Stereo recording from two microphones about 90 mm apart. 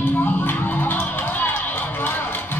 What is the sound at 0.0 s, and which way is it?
Music, 20° left (ahead or behind).